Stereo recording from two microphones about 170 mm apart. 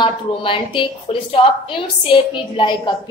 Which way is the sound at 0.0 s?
30° left (ahead or behind).